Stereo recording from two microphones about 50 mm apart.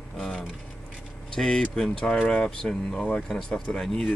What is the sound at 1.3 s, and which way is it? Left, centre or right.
Speech, centre.